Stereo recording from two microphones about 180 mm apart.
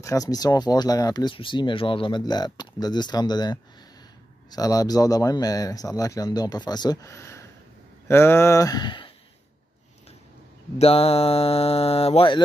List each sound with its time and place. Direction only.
0.0 s speech: 20° left (ahead or behind)
10.8 s speech: 35° left (ahead or behind)